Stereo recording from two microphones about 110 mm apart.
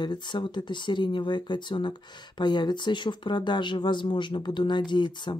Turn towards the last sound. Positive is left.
turn(degrees=45)  # may be behind; listen again after turning